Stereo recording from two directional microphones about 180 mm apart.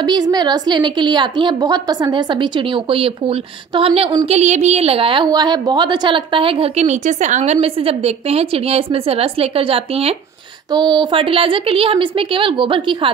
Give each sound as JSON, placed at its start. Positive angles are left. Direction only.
{"t": 0.0, "sound": "a woman's voice", "side_deg": -25}